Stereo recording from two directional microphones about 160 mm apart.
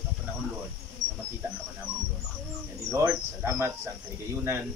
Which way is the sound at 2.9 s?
20° right (ahead or behind).